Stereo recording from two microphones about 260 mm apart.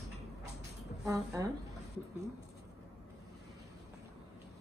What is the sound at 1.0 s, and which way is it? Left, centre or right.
Speech, centre.